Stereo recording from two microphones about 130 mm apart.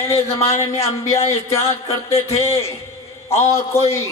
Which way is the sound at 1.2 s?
50° left (ahead or behind).